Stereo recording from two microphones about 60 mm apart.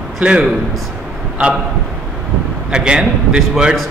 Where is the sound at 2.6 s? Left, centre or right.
Centre.